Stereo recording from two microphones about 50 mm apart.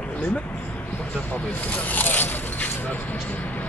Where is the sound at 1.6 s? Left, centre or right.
Left.